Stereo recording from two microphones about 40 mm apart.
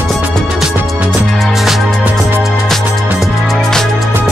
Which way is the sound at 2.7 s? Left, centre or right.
Centre.